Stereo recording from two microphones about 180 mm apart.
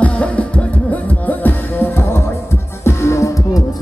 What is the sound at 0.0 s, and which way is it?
Music, 5° left (ahead or behind).